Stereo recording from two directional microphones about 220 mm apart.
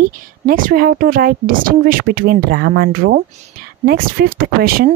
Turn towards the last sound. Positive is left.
turn(degrees=-45)  # may be behind; listen again after turning